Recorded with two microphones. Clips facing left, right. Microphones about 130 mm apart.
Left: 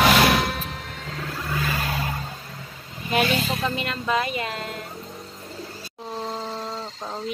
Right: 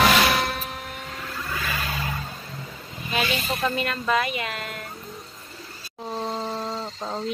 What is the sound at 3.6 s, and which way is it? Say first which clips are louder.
Speech: right 1 dB; 20° left (ahead or behind).